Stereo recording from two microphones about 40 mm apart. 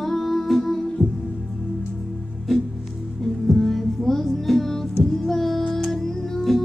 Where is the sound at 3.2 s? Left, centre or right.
Centre.